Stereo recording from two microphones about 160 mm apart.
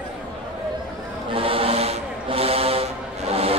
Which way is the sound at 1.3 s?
35° right (ahead or behind).